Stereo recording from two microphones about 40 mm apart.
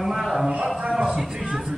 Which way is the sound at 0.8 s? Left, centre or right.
Right.